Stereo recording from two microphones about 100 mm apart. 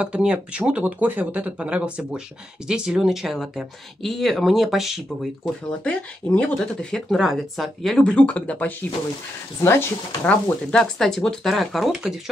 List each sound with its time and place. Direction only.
0.0 s speech: 10° right (ahead or behind)
5.9 s speech: 10° left (ahead or behind)
8.0 s speech: 10° left (ahead or behind)
10.2 s speech: 10° left (ahead or behind)